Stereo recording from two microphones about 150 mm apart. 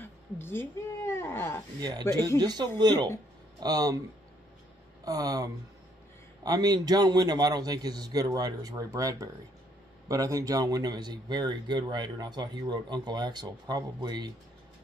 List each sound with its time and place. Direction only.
0.4 s cat: 15° left (ahead or behind)
1.8 s speech: 25° right (ahead or behind)
2.0 s speech: 20° left (ahead or behind)
2.3 s speech: 25° right (ahead or behind)
5.0 s speech: 25° right (ahead or behind)